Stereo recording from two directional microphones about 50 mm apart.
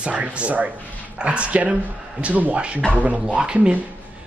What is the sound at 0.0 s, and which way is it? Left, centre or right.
Speech, right.